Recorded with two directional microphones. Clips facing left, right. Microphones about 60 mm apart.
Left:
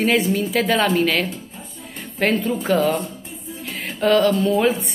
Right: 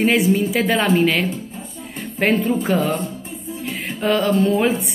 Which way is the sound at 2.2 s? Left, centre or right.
Centre.